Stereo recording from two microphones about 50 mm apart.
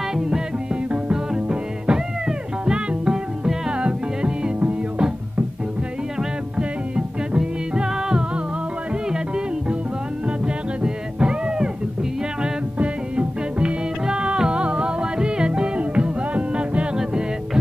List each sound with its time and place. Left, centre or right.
0.1 s music: centre
7.3 s music: centre
10.4 s music: centre
12.7 s music: right